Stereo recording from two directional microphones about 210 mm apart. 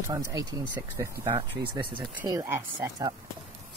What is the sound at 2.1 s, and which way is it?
Speech, 10° right (ahead or behind).